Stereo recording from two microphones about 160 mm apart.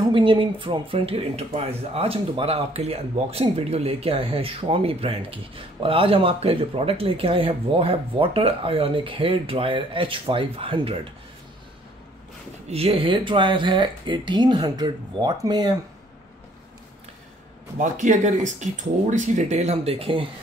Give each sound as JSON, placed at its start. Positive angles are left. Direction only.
{"t": 0.0, "sound": "speech", "side_deg": -30}
{"t": 12.6, "sound": "speech", "side_deg": -40}
{"t": 17.7, "sound": "speech", "side_deg": -50}